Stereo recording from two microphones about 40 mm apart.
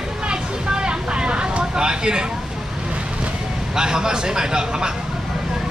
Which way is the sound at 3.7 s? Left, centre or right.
Centre.